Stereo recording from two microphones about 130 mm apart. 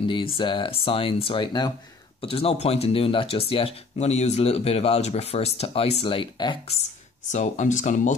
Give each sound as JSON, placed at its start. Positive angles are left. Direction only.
{"t": 0.4, "sound": "speech", "side_deg": 40}
{"t": 2.2, "sound": "speech", "side_deg": 50}
{"t": 7.2, "sound": "speech", "side_deg": 70}